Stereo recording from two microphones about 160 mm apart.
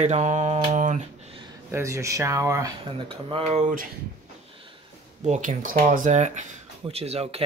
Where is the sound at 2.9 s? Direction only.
35° right (ahead or behind); by 3.9 s 50° right (ahead or behind).